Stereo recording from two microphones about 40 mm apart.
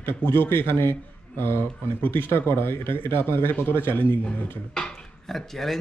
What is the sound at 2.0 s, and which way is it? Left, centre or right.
Speech, left.